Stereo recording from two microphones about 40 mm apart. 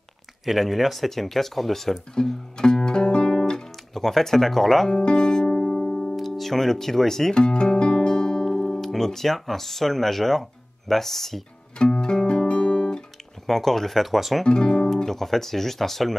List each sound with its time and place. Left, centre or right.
0.5 s speech: centre
2.2 s speech: left
2.5 s guitar: centre
4.9 s music: centre
6.1 s speech: centre
7.3 s music: left
8.5 s speech: centre
11.8 s music: centre
13.5 s speech: centre
14.4 s speech: left
15.0 s speech: centre